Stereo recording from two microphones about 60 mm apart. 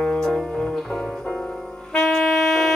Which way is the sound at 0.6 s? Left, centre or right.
Centre.